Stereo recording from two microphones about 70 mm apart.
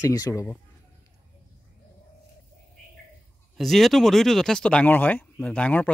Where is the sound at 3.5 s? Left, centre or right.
Centre.